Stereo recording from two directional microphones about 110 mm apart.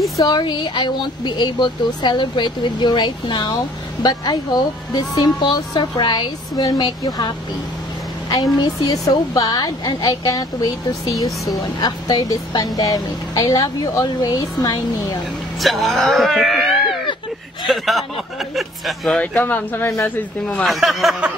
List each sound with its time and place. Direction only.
0.2 s speech: 40° left (ahead or behind)
8.5 s speech: 35° left (ahead or behind)
11.2 s speech: centre (ahead or behind)
11.6 s speech: 35° left (ahead or behind)
15.6 s speech: centre (ahead or behind)
19.1 s speech: 15° left (ahead or behind)
20.6 s speech: centre (ahead or behind)